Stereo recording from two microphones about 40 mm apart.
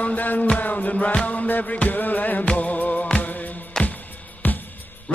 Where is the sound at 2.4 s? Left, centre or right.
Left.